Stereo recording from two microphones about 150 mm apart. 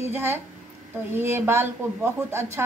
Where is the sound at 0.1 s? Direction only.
15° right (ahead or behind).